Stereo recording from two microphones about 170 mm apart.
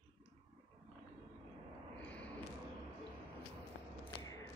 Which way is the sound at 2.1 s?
10° left (ahead or behind).